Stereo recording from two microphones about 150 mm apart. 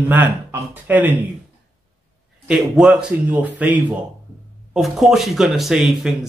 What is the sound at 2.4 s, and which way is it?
Speech, 5° right (ahead or behind).